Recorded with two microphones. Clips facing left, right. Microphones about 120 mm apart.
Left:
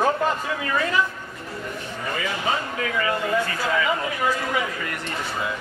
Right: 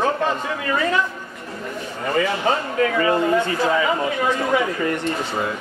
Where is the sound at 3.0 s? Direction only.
30° right (ahead or behind).